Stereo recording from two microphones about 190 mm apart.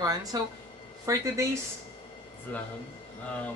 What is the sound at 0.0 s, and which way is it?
Speech, 20° right (ahead or behind).